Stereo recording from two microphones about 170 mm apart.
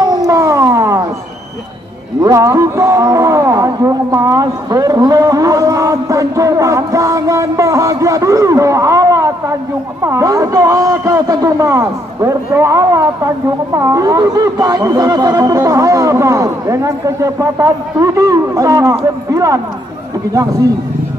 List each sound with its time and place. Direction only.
0.0 s howl: 20° right (ahead or behind)
2.2 s a man's voice: 20° right (ahead or behind)